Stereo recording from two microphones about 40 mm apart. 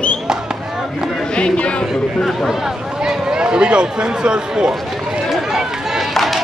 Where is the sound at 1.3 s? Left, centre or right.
Left.